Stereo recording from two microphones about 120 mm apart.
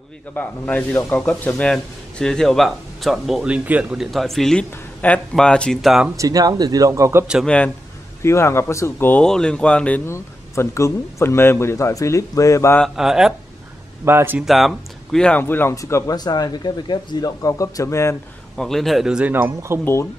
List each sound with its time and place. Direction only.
0.3 s speech: 15° left (ahead or behind); by 4.0 s 10° right (ahead or behind)
4.0 s speech: centre (ahead or behind)
6.1 s speech: 30° right (ahead or behind)
7.4 s speech: 10° left (ahead or behind)
8.2 s speech: 20° left (ahead or behind)
9.2 s speech: 5° left (ahead or behind)
10.0 s speech: 25° left (ahead or behind)
12.9 s speech: 5° right (ahead or behind)
14.0 s speech: 20° right (ahead or behind)
14.4 s speech: centre (ahead or behind); by 18.1 s 25° left (ahead or behind)
18.6 s speech: 5° left (ahead or behind); by 19.8 s 15° right (ahead or behind)
19.8 s speech: 20° left (ahead or behind)